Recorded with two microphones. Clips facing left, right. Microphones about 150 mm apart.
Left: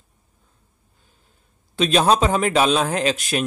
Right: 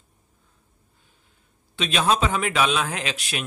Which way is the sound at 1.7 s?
40° left (ahead or behind).